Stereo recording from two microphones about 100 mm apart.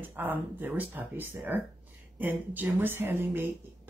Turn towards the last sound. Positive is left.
turn(degrees=-20)  # may be behind; listen again after turning